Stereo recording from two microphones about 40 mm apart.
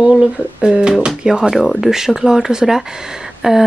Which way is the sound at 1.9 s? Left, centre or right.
Centre.